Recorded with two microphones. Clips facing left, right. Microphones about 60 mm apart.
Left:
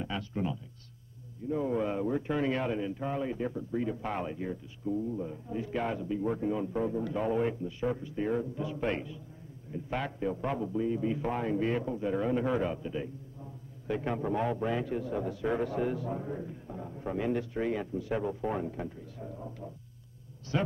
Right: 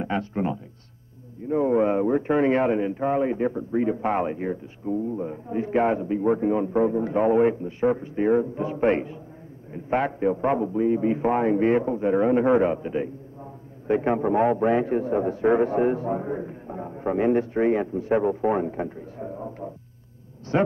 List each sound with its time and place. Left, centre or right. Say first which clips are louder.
0.0 s a man's voice: right 8 dB; right